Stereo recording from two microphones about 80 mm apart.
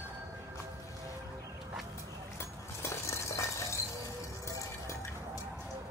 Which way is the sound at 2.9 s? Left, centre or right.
Left.